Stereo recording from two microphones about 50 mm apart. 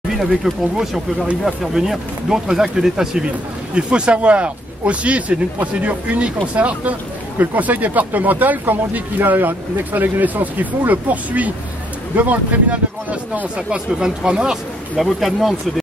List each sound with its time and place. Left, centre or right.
1.4 s speech: centre
15.0 s speech: centre